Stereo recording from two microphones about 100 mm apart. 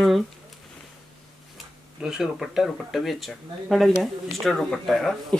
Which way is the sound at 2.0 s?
5° right (ahead or behind).